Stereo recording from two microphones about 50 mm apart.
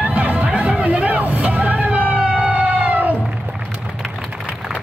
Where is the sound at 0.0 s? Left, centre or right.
Right.